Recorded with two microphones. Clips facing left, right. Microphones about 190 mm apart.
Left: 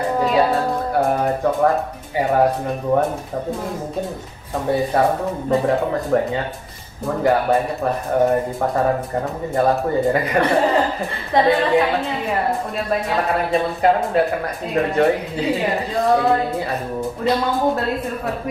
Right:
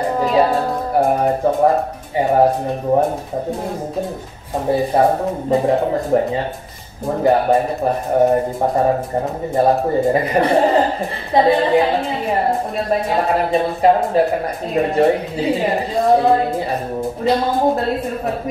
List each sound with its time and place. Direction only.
0.2 s speech: centre (ahead or behind)
0.9 s a woman's voice: 30° right (ahead or behind)
4.6 s a woman's voice: 30° right (ahead or behind)